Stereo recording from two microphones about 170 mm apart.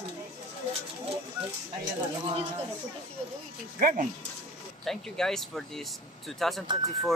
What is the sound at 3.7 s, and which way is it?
Speech, 55° right (ahead or behind).